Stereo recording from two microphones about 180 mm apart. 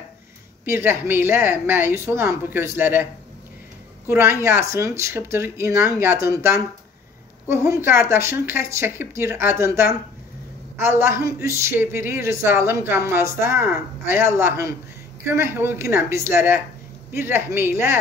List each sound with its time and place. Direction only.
0.7 s a woman's voice: 15° right (ahead or behind)
4.1 s a woman's voice: 15° right (ahead or behind)